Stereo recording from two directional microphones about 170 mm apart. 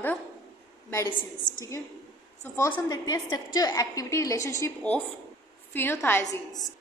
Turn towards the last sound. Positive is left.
turn(degrees=20)  # may be behind; listen again after turning